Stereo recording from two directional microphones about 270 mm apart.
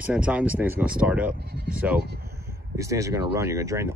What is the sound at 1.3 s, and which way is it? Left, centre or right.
Bleat, right.